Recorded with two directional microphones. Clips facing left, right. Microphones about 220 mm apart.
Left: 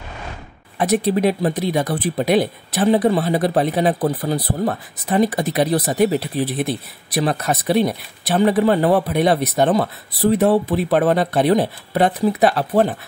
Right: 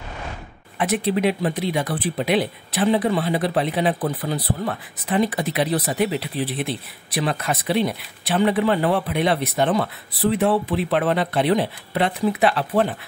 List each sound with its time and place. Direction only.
0.7 s speech: 40° left (ahead or behind)